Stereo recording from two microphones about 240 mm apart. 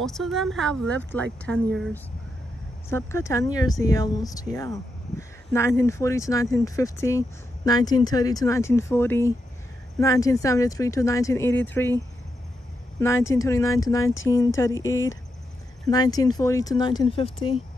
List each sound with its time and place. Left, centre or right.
0.0 s speech: centre
2.9 s speech: centre
5.5 s speech: centre
13.0 s speech: centre